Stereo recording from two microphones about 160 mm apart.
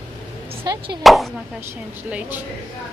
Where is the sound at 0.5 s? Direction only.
30° right (ahead or behind).